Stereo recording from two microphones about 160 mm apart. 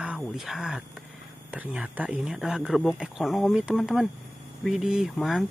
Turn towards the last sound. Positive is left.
turn(degrees=0)  # may be behind; listen again after turning